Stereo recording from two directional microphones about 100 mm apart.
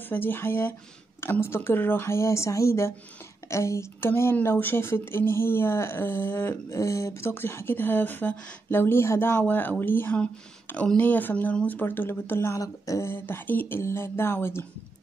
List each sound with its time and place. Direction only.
0.1 s speech: 20° left (ahead or behind)